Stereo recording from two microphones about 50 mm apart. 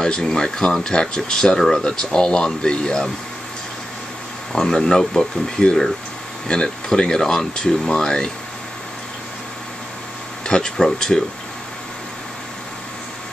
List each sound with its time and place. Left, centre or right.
0.0 s speech: centre
4.5 s speech: centre
10.4 s speech: centre